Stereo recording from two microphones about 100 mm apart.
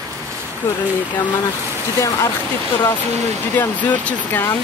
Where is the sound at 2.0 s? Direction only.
35° left (ahead or behind).